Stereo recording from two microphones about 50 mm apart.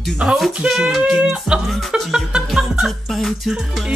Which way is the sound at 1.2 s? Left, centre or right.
Centre.